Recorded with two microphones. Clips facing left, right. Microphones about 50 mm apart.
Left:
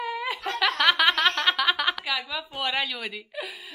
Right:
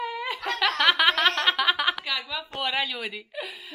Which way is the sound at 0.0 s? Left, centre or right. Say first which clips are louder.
Left 1 dB; centre.